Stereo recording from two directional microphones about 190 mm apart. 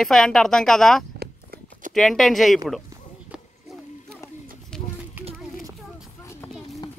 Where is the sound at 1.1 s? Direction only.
50° right (ahead or behind).